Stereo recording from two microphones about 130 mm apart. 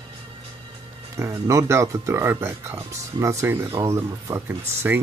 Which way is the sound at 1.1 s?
20° right (ahead or behind).